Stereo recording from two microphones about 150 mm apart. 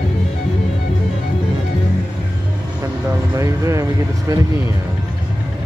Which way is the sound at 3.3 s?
20° right (ahead or behind).